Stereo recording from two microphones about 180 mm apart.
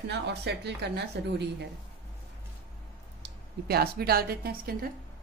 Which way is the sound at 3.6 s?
60° right (ahead or behind).